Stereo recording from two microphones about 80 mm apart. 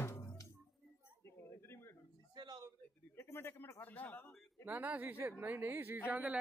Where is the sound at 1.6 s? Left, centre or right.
Left.